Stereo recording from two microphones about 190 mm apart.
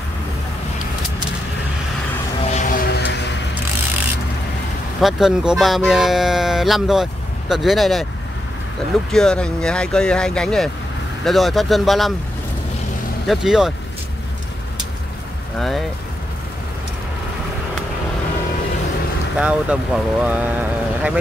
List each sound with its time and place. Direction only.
2.5 s a sound: 45° left (ahead or behind)
2.9 s music: 65° left (ahead or behind)
5.0 s speech: 5° right (ahead or behind)
9.1 s speech: 5° left (ahead or behind)
13.3 s speech: centre (ahead or behind)
19.3 s speech: 5° right (ahead or behind)